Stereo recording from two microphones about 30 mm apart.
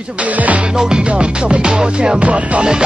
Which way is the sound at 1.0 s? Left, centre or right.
Right.